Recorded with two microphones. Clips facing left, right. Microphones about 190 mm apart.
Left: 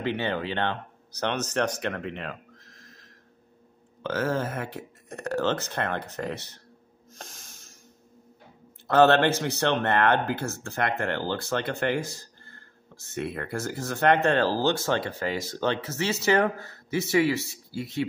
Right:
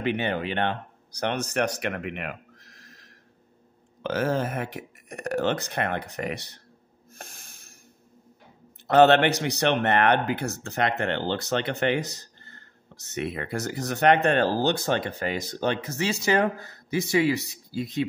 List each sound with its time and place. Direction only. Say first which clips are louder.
0.0 s speech: right 1 dB; 15° right (ahead or behind)
8.9 s speech: right 2 dB; 20° right (ahead or behind)